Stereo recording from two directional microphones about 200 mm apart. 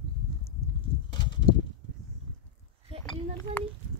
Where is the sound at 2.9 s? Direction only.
30° right (ahead or behind).